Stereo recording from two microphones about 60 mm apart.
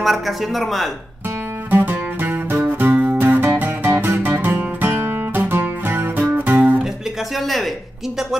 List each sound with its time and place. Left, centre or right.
0.0 s speech: centre
1.7 s music: right
7.3 s speech: centre